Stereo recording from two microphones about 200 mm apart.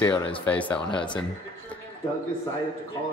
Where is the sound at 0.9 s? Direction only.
25° left (ahead or behind).